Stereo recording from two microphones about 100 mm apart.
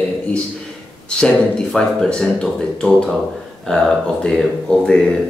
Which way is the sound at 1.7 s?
5° left (ahead or behind).